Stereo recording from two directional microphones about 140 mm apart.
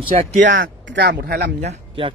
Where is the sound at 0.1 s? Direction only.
75° right (ahead or behind).